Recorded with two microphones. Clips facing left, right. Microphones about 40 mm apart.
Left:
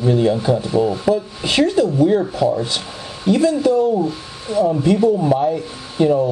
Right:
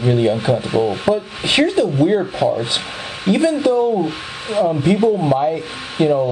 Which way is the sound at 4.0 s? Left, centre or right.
Right.